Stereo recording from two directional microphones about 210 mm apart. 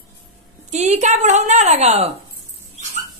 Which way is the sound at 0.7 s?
35° right (ahead or behind).